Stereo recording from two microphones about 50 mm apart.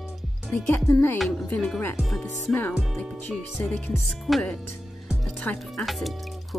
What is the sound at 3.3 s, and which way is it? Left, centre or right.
Music, centre.